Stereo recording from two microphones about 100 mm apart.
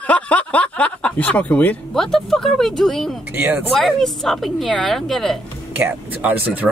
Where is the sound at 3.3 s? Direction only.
15° right (ahead or behind).